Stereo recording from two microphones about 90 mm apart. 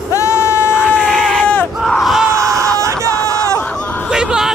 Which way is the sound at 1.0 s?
Centre (ahead or behind).